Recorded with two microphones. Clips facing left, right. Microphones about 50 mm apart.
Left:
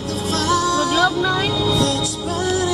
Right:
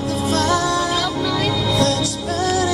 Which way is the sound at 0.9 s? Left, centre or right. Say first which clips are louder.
Left 3 dB; left.